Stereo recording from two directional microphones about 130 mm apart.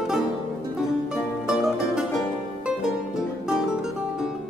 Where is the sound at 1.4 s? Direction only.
5° right (ahead or behind).